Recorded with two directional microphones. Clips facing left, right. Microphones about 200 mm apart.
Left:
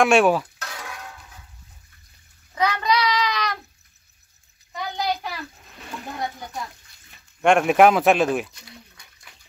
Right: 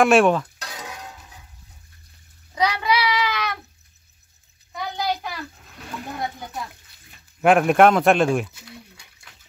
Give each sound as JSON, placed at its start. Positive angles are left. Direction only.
{"t": 0.0, "sound": "speech", "side_deg": 0}
{"t": 0.6, "sound": "a sound", "side_deg": -15}
{"t": 2.5, "sound": "child singing", "side_deg": -10}
{"t": 4.9, "sound": "child singing", "side_deg": 0}
{"t": 7.4, "sound": "speech", "side_deg": 0}